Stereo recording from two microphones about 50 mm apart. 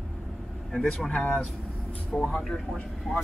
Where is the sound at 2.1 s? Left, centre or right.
Centre.